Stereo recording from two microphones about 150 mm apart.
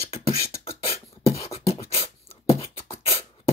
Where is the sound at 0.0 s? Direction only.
40° left (ahead or behind).